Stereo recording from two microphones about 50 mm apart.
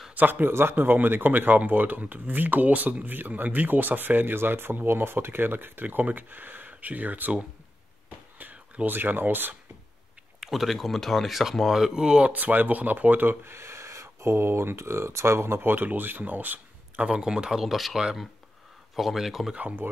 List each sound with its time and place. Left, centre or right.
0.1 s speech: right
0.7 s speech: right
8.8 s speech: right
10.4 s speech: centre
12.3 s speech: right
15.7 s speech: right
17.1 s speech: centre
19.8 s speech: right